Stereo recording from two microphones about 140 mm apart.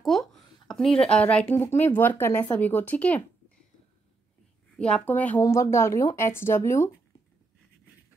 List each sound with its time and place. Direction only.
0.0 s a sound: centre (ahead or behind)
1.0 s speech: 10° left (ahead or behind)
4.7 s speech: 5° left (ahead or behind)